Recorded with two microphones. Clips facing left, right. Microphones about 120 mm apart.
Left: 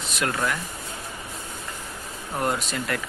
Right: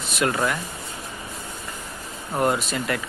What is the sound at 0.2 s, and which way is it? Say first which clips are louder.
Speech: right 3 dB; 15° right (ahead or behind).